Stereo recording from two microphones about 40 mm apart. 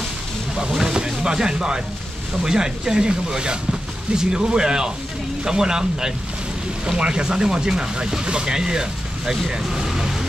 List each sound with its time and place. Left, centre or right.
0.6 s boat: centre
2.4 s speech: centre